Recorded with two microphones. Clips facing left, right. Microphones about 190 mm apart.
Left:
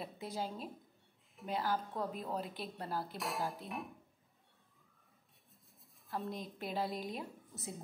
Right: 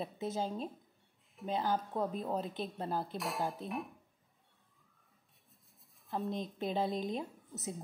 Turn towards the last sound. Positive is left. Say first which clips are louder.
# right 4 dB
turn(degrees=-20)  # may be behind; listen again after turning